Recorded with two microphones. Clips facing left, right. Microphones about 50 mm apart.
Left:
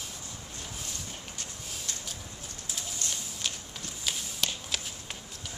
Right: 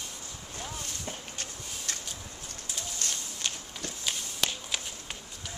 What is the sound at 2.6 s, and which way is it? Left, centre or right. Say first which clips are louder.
Bird: right 1 dB; centre.